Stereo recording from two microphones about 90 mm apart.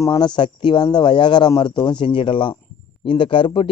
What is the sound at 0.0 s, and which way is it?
Speech, 40° left (ahead or behind).